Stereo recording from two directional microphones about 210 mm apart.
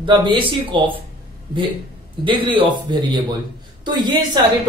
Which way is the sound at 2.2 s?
25° right (ahead or behind).